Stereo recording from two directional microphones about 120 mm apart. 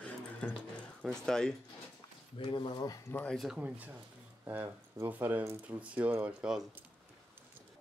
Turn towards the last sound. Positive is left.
turn(degrees=-5)  # may be behind; listen again after turning